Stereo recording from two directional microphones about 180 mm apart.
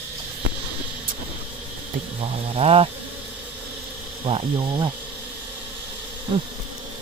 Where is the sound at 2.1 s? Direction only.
30° right (ahead or behind).